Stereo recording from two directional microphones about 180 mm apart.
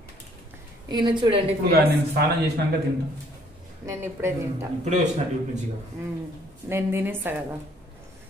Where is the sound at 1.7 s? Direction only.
60° right (ahead or behind).